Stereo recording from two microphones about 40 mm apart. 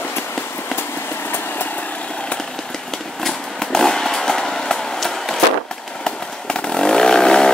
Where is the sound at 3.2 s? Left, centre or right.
Centre.